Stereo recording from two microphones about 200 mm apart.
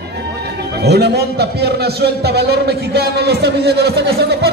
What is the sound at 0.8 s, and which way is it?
A man's voice, 55° right (ahead or behind).